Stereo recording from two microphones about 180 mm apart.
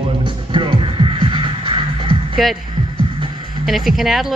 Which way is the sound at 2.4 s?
Centre (ahead or behind).